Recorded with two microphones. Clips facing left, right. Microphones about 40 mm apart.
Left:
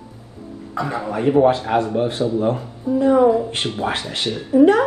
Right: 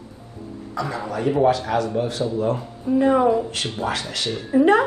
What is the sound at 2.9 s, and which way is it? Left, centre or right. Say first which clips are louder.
Speech: left 1 dB; right.